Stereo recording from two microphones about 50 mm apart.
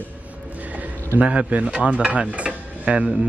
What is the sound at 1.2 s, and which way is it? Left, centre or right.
Speech, right.